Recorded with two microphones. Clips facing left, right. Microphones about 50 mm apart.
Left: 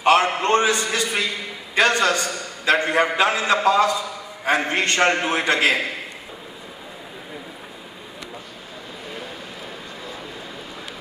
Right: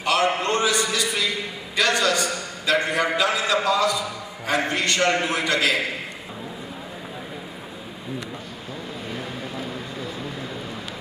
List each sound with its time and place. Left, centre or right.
0.0 s a man's voice: left